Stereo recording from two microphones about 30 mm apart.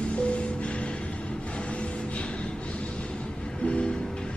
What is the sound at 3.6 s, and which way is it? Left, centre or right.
Music, left.